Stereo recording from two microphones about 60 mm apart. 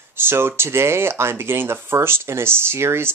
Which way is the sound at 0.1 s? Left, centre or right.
Right.